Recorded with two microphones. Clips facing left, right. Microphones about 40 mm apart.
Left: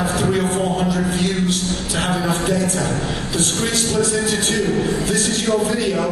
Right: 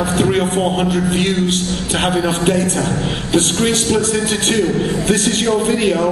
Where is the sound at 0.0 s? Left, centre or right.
Right.